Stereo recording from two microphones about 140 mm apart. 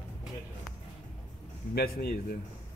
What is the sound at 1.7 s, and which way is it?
Speech, 90° left.